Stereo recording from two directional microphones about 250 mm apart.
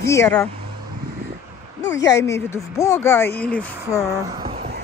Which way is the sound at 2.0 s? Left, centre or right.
Centre.